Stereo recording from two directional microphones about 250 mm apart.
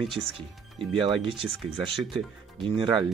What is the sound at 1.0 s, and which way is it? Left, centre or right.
Speech, centre.